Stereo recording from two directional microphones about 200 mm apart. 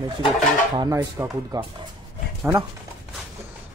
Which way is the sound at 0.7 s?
15° right (ahead or behind).